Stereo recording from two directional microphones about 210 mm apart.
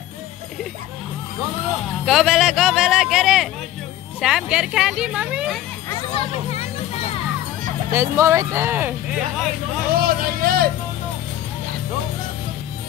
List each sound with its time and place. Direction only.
2.0 s a sound: centre (ahead or behind)
4.2 s speech: centre (ahead or behind)
6.1 s speech: 30° left (ahead or behind)
7.9 s speech: 10° right (ahead or behind)
10.0 s hubbub: 45° right (ahead or behind)